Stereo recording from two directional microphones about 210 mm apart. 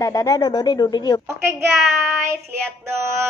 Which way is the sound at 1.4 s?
10° right (ahead or behind).